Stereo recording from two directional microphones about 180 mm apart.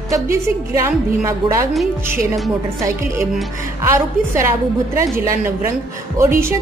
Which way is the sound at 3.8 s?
15° right (ahead or behind).